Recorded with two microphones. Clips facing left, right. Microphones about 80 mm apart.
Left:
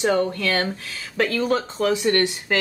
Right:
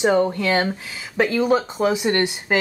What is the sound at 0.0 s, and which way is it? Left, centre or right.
Speech, centre.